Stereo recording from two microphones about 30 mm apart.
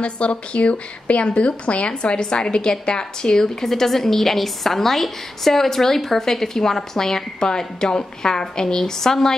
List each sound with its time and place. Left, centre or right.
0.0 s a woman's voice: left
3.3 s a woman's voice: centre